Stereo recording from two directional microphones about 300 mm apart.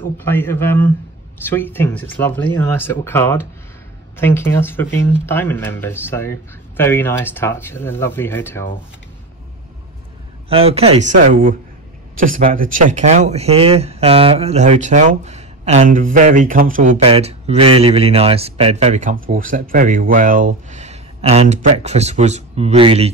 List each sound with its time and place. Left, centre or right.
0.2 s speech: centre
10.5 s speech: centre